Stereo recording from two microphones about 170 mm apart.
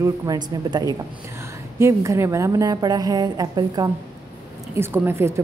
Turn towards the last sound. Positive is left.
turn(degrees=-15)  # may be behind; listen again after turning